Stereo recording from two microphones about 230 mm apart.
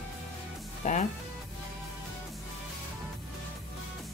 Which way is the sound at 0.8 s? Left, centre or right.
Left.